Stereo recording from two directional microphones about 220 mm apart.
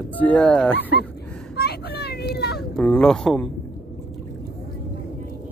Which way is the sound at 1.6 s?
45° left (ahead or behind).